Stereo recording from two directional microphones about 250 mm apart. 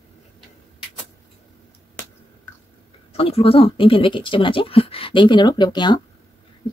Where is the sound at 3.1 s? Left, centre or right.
Left.